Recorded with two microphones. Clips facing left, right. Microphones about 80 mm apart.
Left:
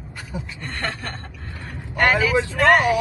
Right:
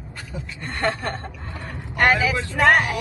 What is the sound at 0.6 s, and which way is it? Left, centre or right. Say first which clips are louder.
Speech: right 6 dB; right.